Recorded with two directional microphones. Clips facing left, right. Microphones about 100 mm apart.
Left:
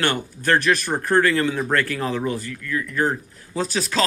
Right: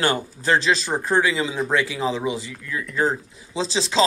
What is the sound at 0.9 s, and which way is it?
Speech, 5° right (ahead or behind).